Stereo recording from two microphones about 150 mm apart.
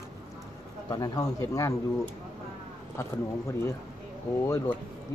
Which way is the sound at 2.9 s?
20° left (ahead or behind).